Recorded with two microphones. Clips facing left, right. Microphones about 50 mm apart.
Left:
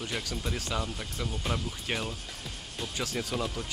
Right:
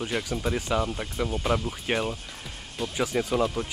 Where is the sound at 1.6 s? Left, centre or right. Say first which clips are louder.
Right 6 dB; right.